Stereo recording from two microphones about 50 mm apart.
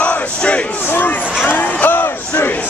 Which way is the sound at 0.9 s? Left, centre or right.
Left.